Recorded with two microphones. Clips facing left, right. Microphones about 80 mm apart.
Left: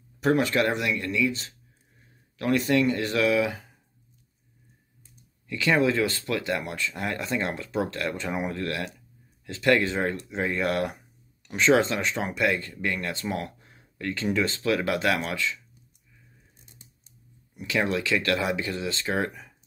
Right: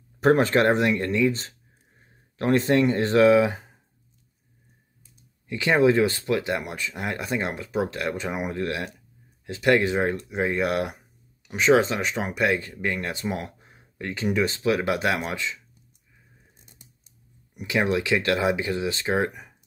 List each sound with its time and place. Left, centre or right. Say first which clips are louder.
0.2 s speech: right 4 dB; right
5.5 s speech: right 3 dB; right
17.6 s speech: right 3 dB; centre